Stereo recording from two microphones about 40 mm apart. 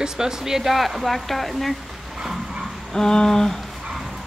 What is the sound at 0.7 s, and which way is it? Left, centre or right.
A woman's voice, centre.